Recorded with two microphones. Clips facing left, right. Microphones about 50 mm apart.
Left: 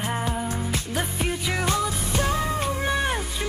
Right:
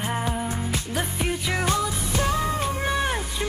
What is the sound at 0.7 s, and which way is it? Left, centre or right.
Music, centre.